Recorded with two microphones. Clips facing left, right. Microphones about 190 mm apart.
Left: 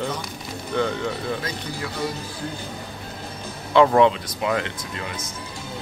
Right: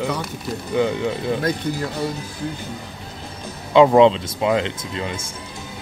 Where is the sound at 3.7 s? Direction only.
20° right (ahead or behind).